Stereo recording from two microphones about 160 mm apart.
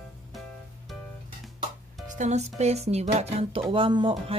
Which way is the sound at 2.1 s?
45° right (ahead or behind).